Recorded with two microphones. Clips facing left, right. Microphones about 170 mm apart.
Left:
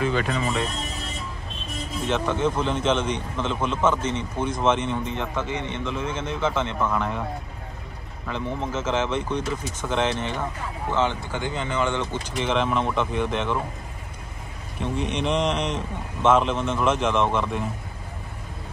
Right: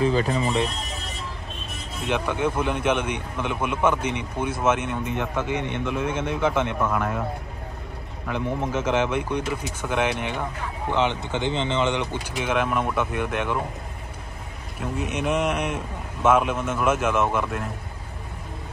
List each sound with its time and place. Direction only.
0.0 s speech: 35° right (ahead or behind)
2.0 s a man's voice: 10° right (ahead or behind)
8.3 s a man's voice: 10° right (ahead or behind)
14.8 s a man's voice: 5° right (ahead or behind)